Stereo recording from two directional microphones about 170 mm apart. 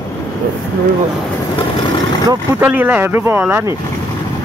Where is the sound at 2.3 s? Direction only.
10° right (ahead or behind).